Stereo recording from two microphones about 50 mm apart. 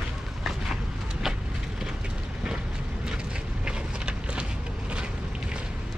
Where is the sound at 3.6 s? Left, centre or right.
Centre.